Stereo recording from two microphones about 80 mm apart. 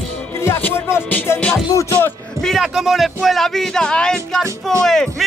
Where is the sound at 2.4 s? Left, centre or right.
Centre.